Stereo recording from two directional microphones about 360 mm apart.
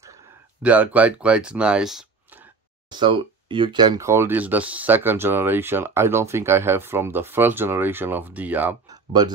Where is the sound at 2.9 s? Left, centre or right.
Centre.